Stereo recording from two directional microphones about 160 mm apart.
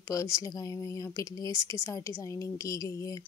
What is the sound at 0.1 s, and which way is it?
A woman's voice, 20° left (ahead or behind).